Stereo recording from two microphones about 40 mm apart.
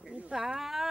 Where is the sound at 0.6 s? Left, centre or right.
Centre.